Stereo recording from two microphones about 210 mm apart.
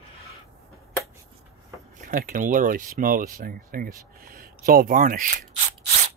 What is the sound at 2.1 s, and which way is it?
Speech, 40° right (ahead or behind).